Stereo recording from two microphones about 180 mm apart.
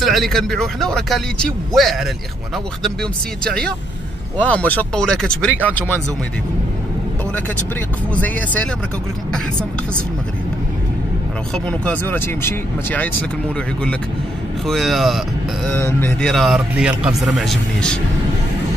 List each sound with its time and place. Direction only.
0.0 s speech: centre (ahead or behind)
8.1 s speech: 10° left (ahead or behind)
11.5 s speech: 10° left (ahead or behind)
14.7 s speech: centre (ahead or behind)
15.7 s speech: 10° left (ahead or behind)